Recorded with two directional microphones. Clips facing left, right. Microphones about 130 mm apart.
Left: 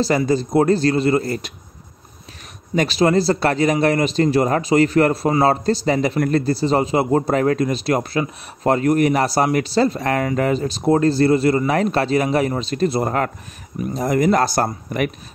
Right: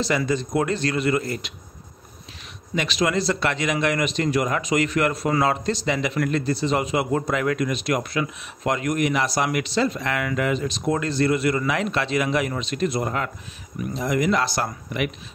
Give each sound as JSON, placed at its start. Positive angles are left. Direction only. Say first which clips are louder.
{"t": 0.0, "sound": "a man's voice", "louder": "left 5 dB", "side_deg": 35}
{"t": 2.7, "sound": "a man's voice", "louder": "left 7 dB", "side_deg": 40}